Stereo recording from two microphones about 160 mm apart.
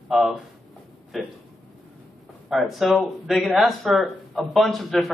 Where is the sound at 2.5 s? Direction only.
Centre (ahead or behind).